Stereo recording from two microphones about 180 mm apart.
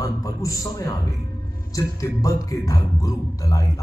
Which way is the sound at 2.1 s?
20° left (ahead or behind).